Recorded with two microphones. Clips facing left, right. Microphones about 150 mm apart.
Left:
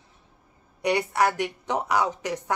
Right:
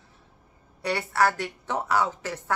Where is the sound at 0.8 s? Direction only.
15° left (ahead or behind).